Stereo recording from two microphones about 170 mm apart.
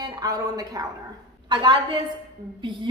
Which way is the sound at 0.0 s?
20° right (ahead or behind).